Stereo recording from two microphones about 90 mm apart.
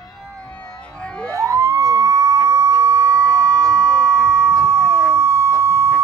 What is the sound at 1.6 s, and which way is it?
Police car, 35° right (ahead or behind).